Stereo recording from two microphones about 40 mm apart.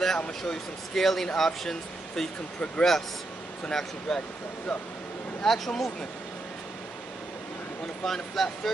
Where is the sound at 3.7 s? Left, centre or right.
Centre.